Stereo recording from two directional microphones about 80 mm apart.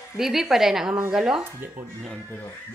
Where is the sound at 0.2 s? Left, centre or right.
Centre.